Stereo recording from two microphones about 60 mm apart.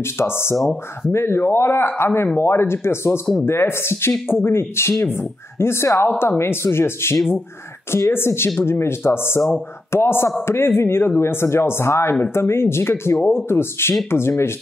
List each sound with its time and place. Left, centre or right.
0.0 s speech: left
0.6 s speech: centre
1.1 s speech: left